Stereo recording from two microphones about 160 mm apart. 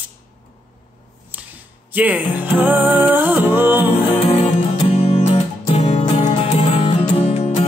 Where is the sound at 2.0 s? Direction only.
10° right (ahead or behind).